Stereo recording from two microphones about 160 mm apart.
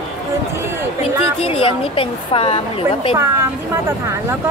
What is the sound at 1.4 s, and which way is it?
A woman's voice, 35° left (ahead or behind).